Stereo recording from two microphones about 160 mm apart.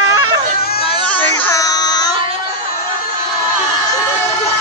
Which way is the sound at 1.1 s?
10° left (ahead or behind).